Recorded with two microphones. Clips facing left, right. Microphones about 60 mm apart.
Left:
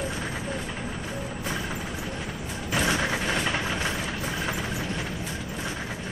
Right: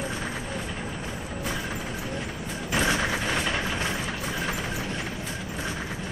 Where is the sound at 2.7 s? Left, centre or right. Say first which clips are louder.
Even; centre.